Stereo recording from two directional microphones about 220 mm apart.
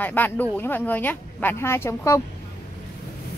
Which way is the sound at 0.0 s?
10° left (ahead or behind).